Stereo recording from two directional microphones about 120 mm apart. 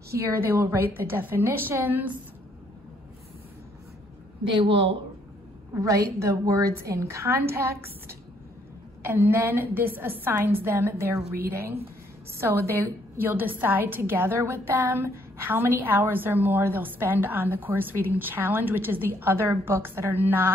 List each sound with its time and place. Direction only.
0.1 s a woman's voice: 25° right (ahead or behind)
4.5 s speech: 45° right (ahead or behind)
5.8 s a woman's voice: 25° right (ahead or behind)